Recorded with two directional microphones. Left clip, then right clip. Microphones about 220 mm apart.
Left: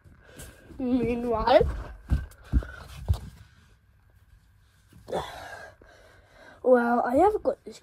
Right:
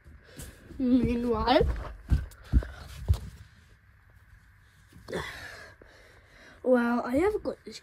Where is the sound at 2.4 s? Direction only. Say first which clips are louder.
Left 1 dB; 10° right (ahead or behind).